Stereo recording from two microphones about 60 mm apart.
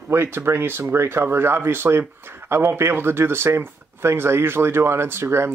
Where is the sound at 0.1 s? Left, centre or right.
Right.